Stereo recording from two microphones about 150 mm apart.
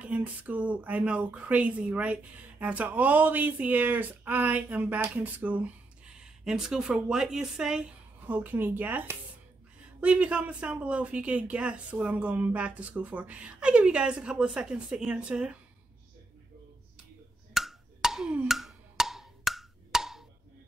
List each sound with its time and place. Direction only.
0.0 s speech: 10° right (ahead or behind)
17.6 s wood block: centre (ahead or behind)